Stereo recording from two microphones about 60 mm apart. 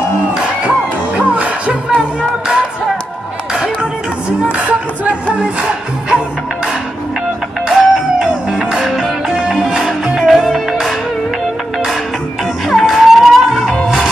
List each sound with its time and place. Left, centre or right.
0.3 s music: centre
4.4 s music: right; by 10.9 s centre
12.6 s music: centre